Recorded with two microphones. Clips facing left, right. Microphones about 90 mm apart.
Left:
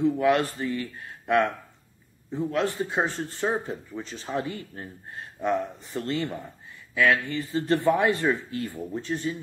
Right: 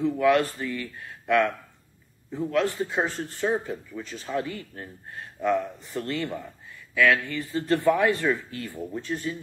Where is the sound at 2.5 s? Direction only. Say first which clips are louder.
Right 2 dB; 20° left (ahead or behind).